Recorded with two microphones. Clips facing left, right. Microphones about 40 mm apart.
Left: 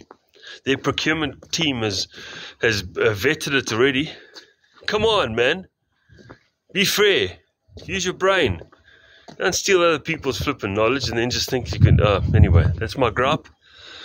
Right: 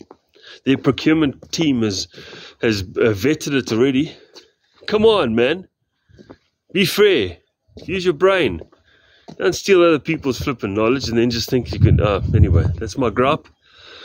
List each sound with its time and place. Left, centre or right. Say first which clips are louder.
0.4 s speech: right 4 dB; centre
4.8 s speech: right 5 dB; centre
6.7 s speech: right 3 dB; centre
7.9 s speech: right 6 dB; centre
8.9 s a sound: right 3 dB; centre
9.5 s speech: right 4 dB; centre
12.0 s speech: left 2 dB; centre
12.3 s speech: right 1 dB; left
12.8 s speech: right 1 dB; centre
13.1 s a sound: right 3 dB; centre